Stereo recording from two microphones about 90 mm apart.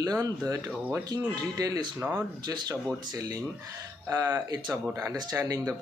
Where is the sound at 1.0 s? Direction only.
45° right (ahead or behind).